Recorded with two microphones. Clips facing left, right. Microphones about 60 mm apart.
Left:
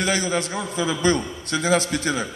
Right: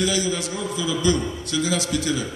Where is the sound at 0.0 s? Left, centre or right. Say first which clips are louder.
Left 1 dB; left.